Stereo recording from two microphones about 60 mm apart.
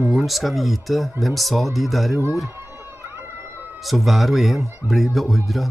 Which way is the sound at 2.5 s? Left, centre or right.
Right.